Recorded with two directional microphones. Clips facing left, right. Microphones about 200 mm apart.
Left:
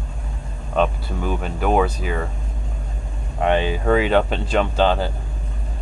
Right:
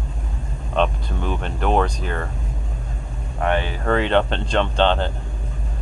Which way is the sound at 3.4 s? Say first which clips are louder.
Left 3 dB; 15° left (ahead or behind).